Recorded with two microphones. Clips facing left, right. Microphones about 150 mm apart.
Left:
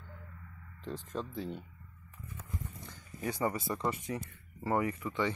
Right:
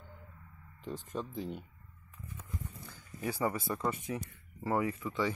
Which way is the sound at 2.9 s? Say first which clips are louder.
Even; 5° right (ahead or behind).